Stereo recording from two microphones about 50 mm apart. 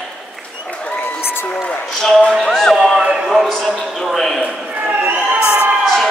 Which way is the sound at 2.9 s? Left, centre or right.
Centre.